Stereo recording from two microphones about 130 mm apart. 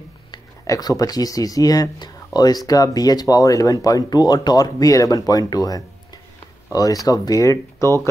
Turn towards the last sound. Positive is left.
turn(degrees=25)  # may be behind; listen again after turning